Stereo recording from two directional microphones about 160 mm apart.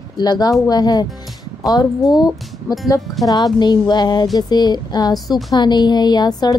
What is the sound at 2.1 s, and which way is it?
Speech, 25° left (ahead or behind).